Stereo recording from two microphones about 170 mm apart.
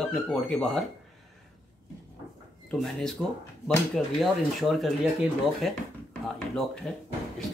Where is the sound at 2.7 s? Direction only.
Centre (ahead or behind).